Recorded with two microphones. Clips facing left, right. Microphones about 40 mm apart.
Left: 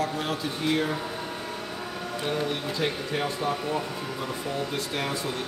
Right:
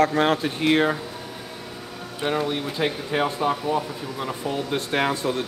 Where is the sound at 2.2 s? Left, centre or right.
Right.